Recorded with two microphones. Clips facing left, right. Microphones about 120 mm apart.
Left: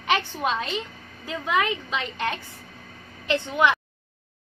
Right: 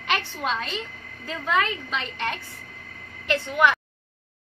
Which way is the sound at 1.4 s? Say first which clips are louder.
Even; 10° left (ahead or behind).